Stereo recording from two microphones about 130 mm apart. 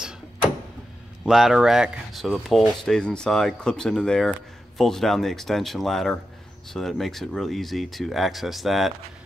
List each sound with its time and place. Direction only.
1.2 s speech: 5° right (ahead or behind)